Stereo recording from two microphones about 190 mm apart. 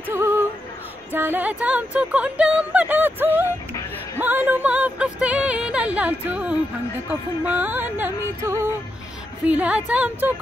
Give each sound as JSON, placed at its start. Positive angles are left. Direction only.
{"t": 0.1, "sound": "female singing", "side_deg": -15}
{"t": 1.1, "sound": "speech", "side_deg": -10}